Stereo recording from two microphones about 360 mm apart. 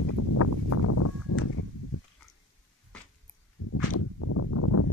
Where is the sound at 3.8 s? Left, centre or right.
Left.